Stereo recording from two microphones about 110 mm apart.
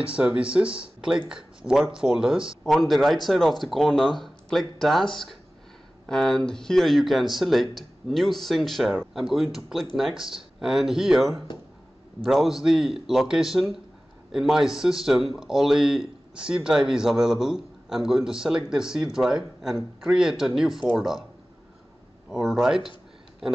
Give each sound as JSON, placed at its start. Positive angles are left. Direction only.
{"t": 0.1, "sound": "speech", "side_deg": -10}
{"t": 22.3, "sound": "speech", "side_deg": -5}